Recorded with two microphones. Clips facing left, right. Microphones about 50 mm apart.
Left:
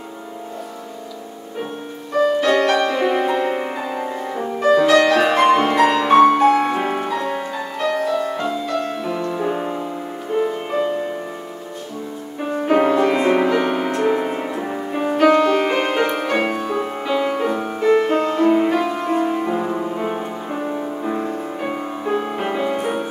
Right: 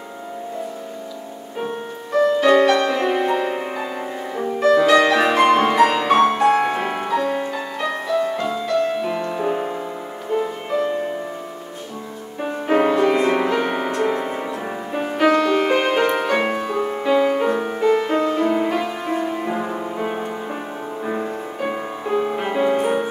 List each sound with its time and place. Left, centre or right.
2.4 s music: centre
3.0 s music: centre
3.7 s music: centre
9.1 s music: centre
9.4 s music: centre
12.6 s music: centre
14.3 s music: centre
14.6 s music: centre
17.8 s music: centre
19.4 s music: centre
22.5 s music: centre